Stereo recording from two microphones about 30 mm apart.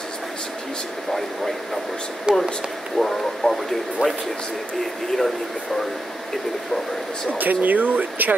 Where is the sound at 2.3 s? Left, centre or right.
Right.